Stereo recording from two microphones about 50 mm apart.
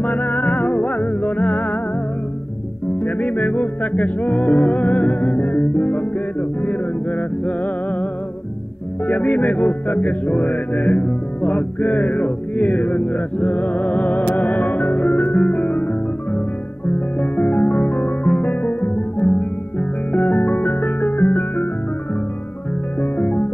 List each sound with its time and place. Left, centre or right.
0.0 s music: left
3.0 s music: left
22.9 s music: left